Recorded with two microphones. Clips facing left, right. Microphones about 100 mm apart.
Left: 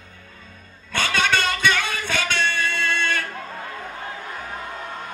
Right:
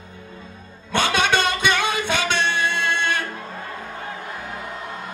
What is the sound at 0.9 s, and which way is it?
Music, 20° right (ahead or behind).